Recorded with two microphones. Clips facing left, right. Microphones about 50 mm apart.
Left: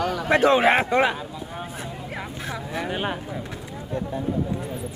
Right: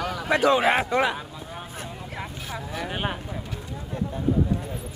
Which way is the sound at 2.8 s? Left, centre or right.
Centre.